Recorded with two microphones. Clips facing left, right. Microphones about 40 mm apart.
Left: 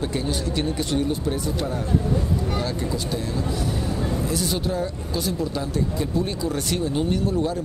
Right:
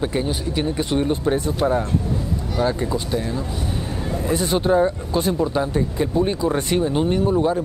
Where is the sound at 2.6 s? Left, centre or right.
Right.